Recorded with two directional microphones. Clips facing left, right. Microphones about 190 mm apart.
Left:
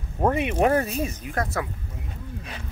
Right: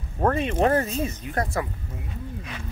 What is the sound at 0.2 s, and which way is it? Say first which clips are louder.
Speech: even; 15° left (ahead or behind).